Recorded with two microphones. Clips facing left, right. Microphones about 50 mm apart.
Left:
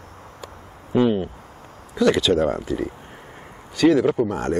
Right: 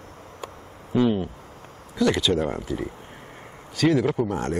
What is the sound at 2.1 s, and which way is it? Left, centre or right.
Speech, centre.